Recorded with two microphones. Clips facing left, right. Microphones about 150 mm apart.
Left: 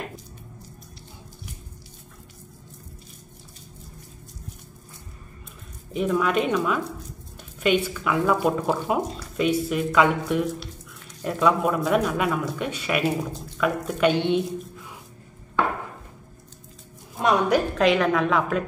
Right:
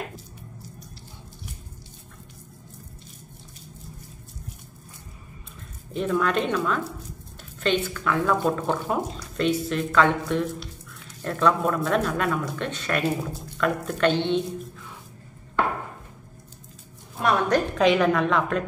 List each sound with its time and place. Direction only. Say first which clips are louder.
5.9 s speech: left 1 dB; 5° left (ahead or behind)
17.2 s a woman's voice: left 1 dB; 15° left (ahead or behind)
17.7 s a woman's voice: right 3 dB; centre (ahead or behind)